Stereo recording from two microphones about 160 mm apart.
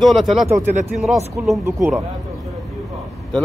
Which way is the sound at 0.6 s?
45° right (ahead or behind).